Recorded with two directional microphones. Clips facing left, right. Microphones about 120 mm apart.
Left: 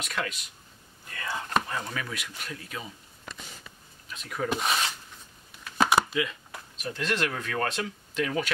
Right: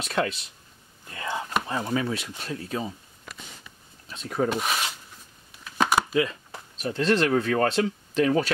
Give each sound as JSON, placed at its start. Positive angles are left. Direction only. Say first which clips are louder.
{"t": 0.0, "sound": "speech", "louder": "right 7 dB", "side_deg": -30}
{"t": 4.1, "sound": "speech", "louder": "right 6 dB", "side_deg": -30}
{"t": 4.5, "sound": "speech", "louder": "right 1 dB", "side_deg": 0}
{"t": 5.9, "sound": "a sound", "louder": "left 1 dB", "side_deg": 0}
{"t": 6.1, "sound": "speech", "louder": "right 5 dB", "side_deg": -35}